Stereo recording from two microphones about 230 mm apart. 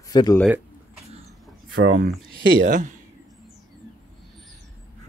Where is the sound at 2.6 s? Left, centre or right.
Right.